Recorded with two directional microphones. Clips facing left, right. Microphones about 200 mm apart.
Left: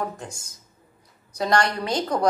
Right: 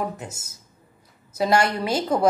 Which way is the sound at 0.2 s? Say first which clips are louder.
Right 1 dB; 5° right (ahead or behind).